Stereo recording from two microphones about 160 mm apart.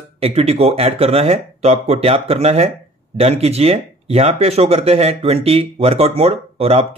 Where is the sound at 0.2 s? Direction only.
40° right (ahead or behind).